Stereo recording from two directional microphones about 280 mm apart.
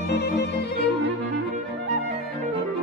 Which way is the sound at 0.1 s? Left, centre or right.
Left.